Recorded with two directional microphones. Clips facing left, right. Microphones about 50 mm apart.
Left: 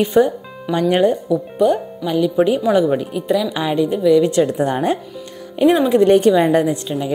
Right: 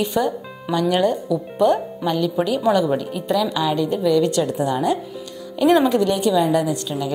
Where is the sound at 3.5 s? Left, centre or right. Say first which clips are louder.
Left 2 dB; left.